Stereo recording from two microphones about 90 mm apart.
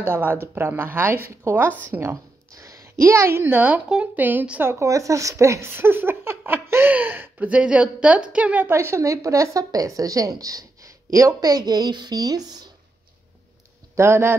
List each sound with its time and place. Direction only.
0.0 s a woman's voice: 25° right (ahead or behind)
2.5 s a woman's voice: 35° right (ahead or behind); by 8.7 s 20° right (ahead or behind)
8.7 s a woman's voice: 30° right (ahead or behind)
13.9 s a woman's voice: 30° right (ahead or behind)